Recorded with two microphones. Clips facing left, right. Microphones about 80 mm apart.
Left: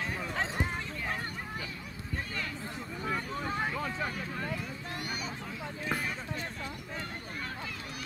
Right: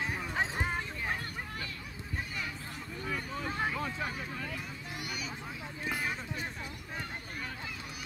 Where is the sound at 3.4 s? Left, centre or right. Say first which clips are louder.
Right 1 dB; centre.